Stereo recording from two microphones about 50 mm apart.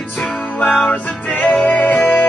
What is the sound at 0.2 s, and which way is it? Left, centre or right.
Music, left.